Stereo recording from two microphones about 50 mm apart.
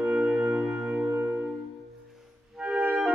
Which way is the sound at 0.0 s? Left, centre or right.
Right.